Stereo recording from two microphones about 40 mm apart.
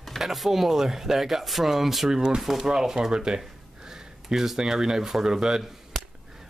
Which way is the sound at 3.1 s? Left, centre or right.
Right.